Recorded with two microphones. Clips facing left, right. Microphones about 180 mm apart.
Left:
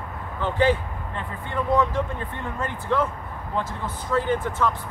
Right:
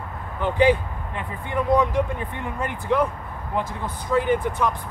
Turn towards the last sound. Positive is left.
turn(degrees=-15)  # may be behind; listen again after turning